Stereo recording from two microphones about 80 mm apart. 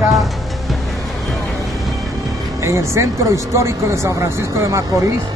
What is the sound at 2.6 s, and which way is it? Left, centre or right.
Speech, right.